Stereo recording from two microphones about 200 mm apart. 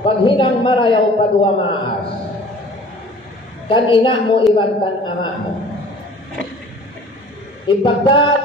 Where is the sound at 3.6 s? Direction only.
25° left (ahead or behind).